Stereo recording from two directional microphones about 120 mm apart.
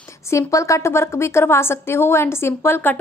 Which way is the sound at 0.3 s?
25° left (ahead or behind).